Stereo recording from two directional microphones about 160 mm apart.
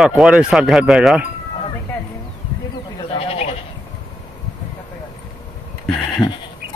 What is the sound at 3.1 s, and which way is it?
Sheep, 40° left (ahead or behind).